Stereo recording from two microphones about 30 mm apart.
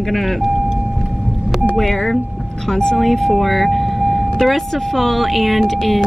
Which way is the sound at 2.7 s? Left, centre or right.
Centre.